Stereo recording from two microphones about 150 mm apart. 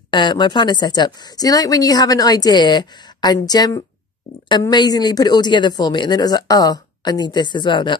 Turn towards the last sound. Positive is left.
turn(degrees=30)  # may be behind; listen again after turning